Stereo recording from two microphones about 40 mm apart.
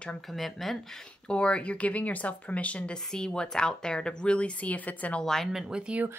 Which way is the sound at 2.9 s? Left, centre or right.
Centre.